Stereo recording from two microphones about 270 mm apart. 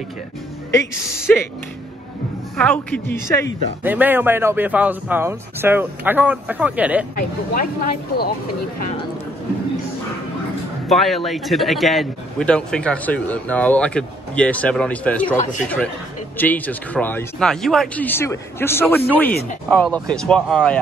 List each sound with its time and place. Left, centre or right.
1.2 s speech: centre
2.6 s speech: centre
3.8 s speech: centre
7.2 s speech: left
10.9 s a man's voice: centre
16.3 s speech: centre